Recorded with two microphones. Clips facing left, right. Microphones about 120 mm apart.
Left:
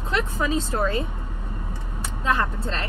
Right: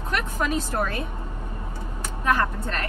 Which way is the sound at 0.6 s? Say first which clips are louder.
Left 2 dB; 20° left (ahead or behind).